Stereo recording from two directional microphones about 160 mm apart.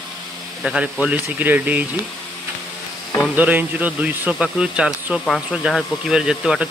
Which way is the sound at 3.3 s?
10° right (ahead or behind).